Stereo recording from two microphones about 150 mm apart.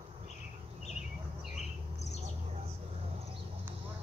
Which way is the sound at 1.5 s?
50° left (ahead or behind).